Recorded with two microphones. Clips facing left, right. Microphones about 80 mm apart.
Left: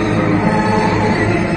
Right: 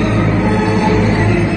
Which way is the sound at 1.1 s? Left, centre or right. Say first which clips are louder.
Right 1 dB; left.